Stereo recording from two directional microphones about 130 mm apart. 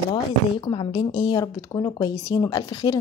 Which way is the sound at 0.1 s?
35° left (ahead or behind).